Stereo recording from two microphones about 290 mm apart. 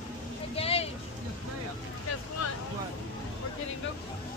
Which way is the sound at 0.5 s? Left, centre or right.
Centre.